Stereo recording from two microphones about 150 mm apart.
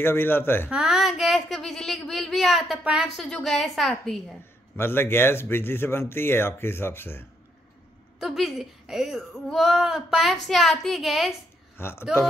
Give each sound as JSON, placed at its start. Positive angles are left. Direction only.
{"t": 0.0, "sound": "speech", "side_deg": 15}
{"t": 0.7, "sound": "speech", "side_deg": -5}
{"t": 4.7, "sound": "speech", "side_deg": 15}
{"t": 8.2, "sound": "speech", "side_deg": 0}
{"t": 11.7, "sound": "speech", "side_deg": 15}